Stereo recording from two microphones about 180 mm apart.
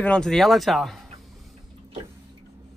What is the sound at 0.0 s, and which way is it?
Speech, 5° left (ahead or behind).